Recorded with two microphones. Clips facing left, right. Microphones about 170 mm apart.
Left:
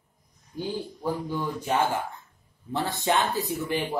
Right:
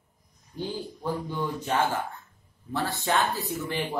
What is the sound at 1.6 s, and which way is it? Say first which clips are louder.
A man's voice: left 1 dB; 10° left (ahead or behind).